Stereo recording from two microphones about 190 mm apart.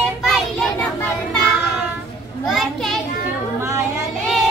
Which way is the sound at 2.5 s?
Centre (ahead or behind).